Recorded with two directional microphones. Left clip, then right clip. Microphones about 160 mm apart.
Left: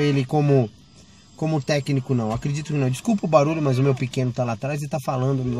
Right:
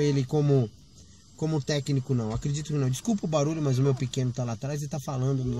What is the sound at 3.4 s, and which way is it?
Speech, 30° left (ahead or behind).